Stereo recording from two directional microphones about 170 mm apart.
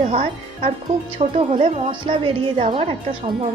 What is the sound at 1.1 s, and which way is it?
A woman's voice, 35° right (ahead or behind).